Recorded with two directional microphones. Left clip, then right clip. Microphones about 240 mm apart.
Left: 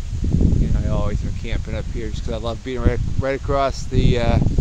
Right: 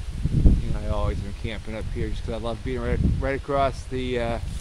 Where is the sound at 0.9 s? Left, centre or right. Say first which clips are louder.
Right 1 dB; centre.